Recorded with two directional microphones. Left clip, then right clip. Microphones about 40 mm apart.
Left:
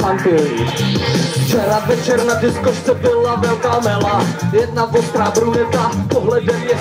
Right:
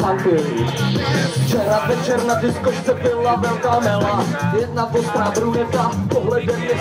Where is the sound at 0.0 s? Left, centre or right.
Left.